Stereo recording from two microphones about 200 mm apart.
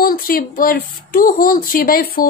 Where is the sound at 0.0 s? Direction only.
45° left (ahead or behind).